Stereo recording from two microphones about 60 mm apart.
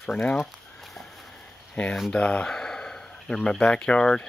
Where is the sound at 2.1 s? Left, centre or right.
Centre.